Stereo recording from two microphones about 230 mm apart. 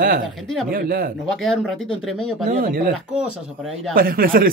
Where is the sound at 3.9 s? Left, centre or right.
Right.